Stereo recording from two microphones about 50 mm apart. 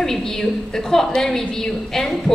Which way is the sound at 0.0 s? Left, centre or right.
Centre.